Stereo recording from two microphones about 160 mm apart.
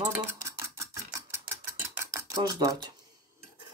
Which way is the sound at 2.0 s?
20° right (ahead or behind).